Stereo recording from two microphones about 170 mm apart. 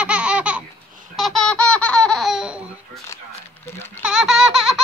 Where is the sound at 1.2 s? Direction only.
5° left (ahead or behind).